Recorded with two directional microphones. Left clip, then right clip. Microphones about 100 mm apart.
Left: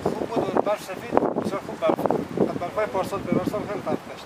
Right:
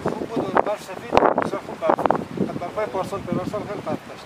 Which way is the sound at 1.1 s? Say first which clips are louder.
Right 5 dB; 60° right (ahead or behind).